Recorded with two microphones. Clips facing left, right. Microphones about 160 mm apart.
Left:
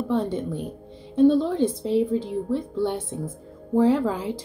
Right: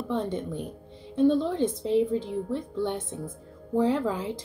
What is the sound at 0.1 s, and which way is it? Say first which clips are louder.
Speech: left 3 dB; 10° left (ahead or behind).